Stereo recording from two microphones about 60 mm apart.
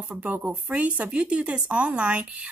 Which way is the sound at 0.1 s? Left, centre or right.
Right.